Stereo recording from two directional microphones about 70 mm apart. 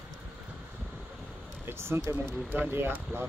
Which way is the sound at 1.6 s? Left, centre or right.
Right.